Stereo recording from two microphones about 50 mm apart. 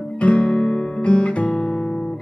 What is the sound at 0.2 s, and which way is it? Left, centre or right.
Music, left.